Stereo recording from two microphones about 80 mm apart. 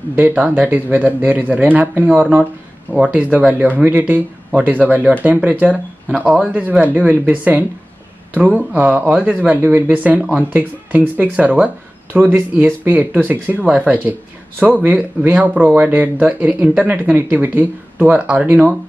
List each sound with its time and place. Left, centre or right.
0.2 s speech: centre